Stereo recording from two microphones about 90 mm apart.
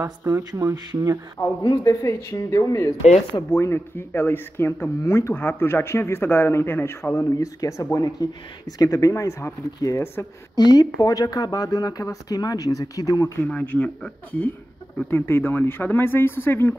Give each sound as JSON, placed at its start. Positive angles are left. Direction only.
{"t": 0.0, "sound": "speech", "side_deg": -30}
{"t": 1.4, "sound": "speech", "side_deg": 35}
{"t": 7.2, "sound": "speech", "side_deg": 40}
{"t": 10.5, "sound": "speech", "side_deg": 50}
{"t": 13.5, "sound": "speech", "side_deg": 15}
{"t": 15.0, "sound": "speech", "side_deg": 25}